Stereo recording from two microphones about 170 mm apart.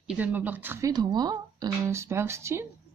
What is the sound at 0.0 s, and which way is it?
Speech, 5° right (ahead or behind).